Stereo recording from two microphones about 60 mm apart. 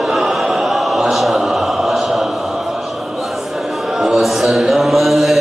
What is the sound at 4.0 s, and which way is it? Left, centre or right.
Chant, centre.